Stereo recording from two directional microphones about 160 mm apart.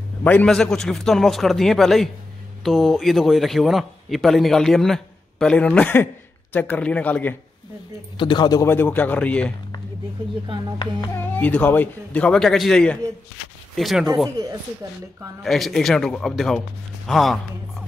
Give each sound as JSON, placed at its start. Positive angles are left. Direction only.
{"t": 0.2, "sound": "a man's voice", "side_deg": 10}
{"t": 8.2, "sound": "a man's voice", "side_deg": 30}
{"t": 8.6, "sound": "speech", "side_deg": 10}
{"t": 11.1, "sound": "a man's voice", "side_deg": 10}
{"t": 15.4, "sound": "a man's voice", "side_deg": 0}